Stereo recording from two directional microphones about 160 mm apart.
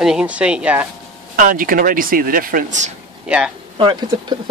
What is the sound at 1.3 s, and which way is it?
Speech, 55° right (ahead or behind).